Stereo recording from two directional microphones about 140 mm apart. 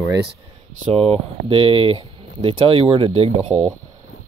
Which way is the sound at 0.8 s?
45° right (ahead or behind).